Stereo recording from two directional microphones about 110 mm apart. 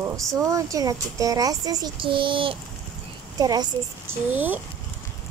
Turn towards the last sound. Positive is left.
turn(degrees=-15)  # may be behind; listen again after turning